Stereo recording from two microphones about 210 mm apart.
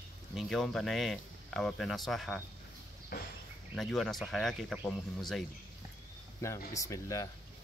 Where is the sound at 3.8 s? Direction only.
Centre (ahead or behind).